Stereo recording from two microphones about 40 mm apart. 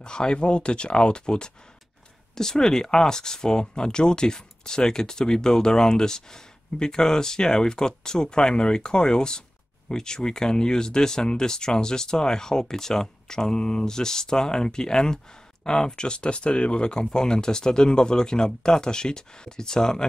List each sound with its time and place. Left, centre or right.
0.0 s speech: left